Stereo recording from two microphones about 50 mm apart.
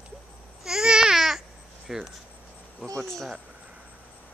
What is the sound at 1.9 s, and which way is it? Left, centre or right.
Speech, centre.